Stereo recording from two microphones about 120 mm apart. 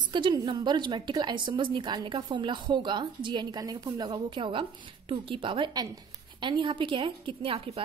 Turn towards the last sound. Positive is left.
turn(degrees=-55)  # may be behind; listen again after turning